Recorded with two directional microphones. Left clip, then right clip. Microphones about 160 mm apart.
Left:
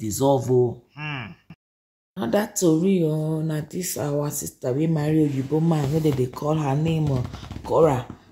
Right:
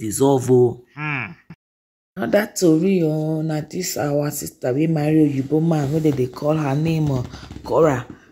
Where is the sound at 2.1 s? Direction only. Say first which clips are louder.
Right 5 dB; 10° right (ahead or behind).